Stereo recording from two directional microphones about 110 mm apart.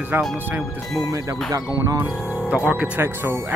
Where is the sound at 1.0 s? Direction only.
30° right (ahead or behind).